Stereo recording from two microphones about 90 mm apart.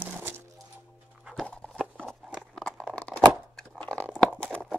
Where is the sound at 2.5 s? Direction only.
5° left (ahead or behind).